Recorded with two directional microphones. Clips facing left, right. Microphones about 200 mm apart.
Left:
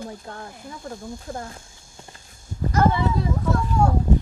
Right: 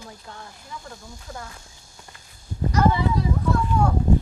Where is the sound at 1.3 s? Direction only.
30° left (ahead or behind).